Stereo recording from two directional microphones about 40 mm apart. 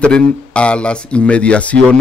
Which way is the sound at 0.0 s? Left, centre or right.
Left.